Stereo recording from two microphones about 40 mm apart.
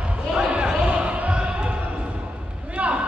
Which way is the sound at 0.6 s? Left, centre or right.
Centre.